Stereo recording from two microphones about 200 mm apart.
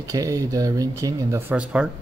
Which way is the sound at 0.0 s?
15° right (ahead or behind).